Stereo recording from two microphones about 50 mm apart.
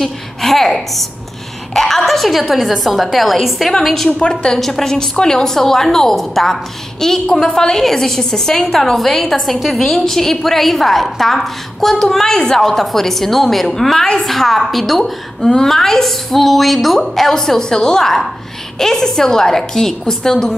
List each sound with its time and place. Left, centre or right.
0.0 s a sound: centre
1.7 s a woman's voice: centre
4.2 s a woman's voice: centre
4.6 s a woman's voice: centre